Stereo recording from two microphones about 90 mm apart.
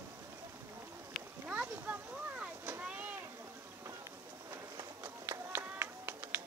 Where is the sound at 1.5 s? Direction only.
15° right (ahead or behind).